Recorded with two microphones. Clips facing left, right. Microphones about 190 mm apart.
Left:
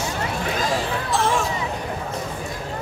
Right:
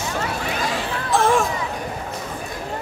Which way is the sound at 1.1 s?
50° right (ahead or behind).